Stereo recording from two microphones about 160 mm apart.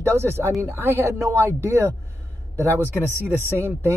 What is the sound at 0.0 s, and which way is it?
Speech, 15° right (ahead or behind).